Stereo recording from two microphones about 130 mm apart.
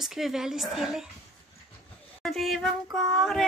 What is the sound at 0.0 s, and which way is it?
A woman's voice, 5° right (ahead or behind).